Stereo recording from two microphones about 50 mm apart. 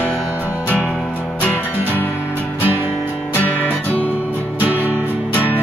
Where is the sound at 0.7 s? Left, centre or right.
Left.